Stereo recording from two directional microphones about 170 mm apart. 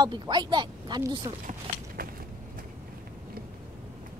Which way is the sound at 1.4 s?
60° right (ahead or behind).